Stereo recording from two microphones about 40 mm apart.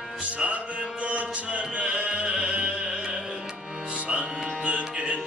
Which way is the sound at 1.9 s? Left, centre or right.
Centre.